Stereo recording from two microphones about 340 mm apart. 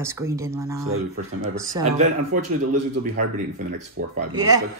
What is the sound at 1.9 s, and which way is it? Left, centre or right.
Speech, right.